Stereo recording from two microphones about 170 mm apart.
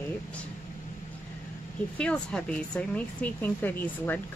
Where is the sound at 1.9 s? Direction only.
5° left (ahead or behind).